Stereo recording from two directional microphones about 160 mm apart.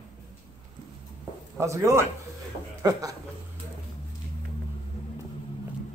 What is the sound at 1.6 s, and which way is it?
A man's voice, 20° right (ahead or behind).